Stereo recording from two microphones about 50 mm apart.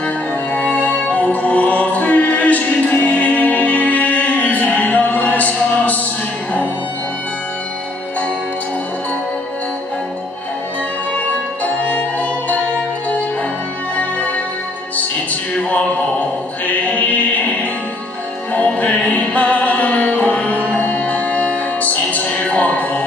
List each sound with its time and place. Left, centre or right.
0.0 s music: left
11.1 s music: left
13.9 s music: left
15.7 s music: left
18.8 s music: left